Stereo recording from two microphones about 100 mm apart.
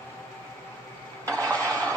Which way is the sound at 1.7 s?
15° left (ahead or behind).